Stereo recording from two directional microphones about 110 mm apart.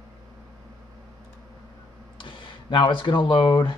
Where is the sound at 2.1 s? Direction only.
50° left (ahead or behind).